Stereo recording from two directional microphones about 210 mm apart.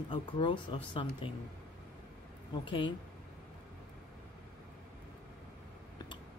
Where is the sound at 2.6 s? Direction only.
25° left (ahead or behind).